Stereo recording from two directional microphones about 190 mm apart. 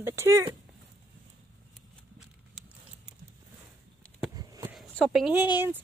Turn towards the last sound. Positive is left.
turn(degrees=-5)  # may be behind; listen again after turning